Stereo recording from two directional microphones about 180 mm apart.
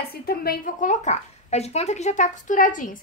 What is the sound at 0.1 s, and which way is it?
A woman's voice, 55° left (ahead or behind).